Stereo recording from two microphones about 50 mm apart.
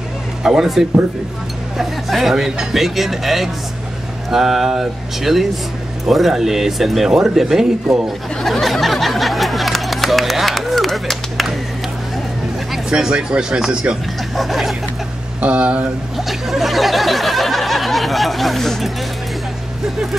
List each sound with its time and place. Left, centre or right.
0.4 s speech: centre
8.4 s a sound: centre
12.9 s speech: centre
14.3 s speech: centre
15.4 s speech: right
16.3 s a sound: centre